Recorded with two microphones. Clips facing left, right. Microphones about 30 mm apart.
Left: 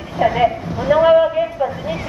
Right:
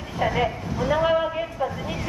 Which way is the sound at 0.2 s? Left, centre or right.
Centre.